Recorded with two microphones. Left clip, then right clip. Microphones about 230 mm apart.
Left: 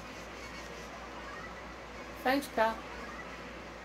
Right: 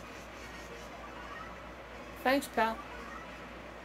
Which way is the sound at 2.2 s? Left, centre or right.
Right.